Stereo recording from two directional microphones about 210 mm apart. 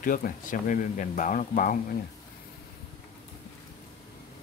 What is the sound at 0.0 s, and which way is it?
Speech, 40° left (ahead or behind).